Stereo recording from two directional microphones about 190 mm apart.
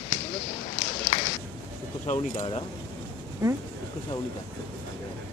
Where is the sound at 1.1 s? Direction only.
35° left (ahead or behind).